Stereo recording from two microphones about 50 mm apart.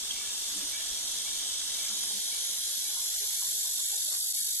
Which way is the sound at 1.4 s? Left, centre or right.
Left.